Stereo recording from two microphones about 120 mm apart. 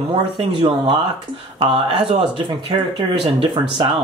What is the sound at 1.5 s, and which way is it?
Speech, 45° right (ahead or behind).